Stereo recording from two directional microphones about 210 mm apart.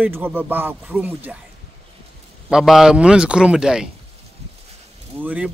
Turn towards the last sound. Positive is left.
turn(degrees=-5)  # may be behind; listen again after turning